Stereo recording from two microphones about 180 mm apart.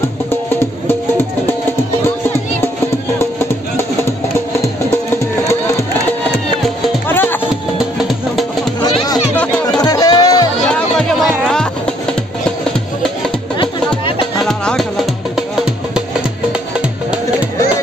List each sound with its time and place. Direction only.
0.6 s music: 15° left (ahead or behind)
3.2 s music: 15° left (ahead or behind)
7.1 s music: 10° left (ahead or behind)
7.7 s music: 5° right (ahead or behind)
9.8 s music: 20° left (ahead or behind)
10.7 s music: 5° left (ahead or behind)
14.4 s music: 5° left (ahead or behind)